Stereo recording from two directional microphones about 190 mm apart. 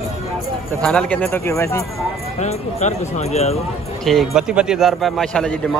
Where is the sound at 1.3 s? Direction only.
15° left (ahead or behind).